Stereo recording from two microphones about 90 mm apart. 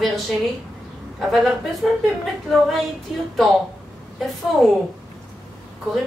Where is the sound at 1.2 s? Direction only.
Centre (ahead or behind).